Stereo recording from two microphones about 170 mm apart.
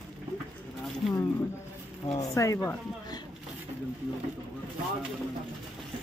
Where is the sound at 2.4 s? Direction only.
15° left (ahead or behind).